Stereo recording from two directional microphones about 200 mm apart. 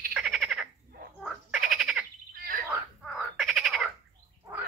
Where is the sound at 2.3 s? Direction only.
45° right (ahead or behind).